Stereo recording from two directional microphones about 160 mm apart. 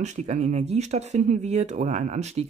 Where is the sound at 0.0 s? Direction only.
45° right (ahead or behind).